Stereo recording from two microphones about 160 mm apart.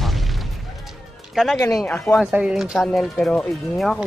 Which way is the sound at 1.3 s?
Centre (ahead or behind).